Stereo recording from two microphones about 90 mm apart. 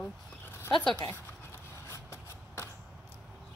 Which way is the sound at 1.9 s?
35° left (ahead or behind).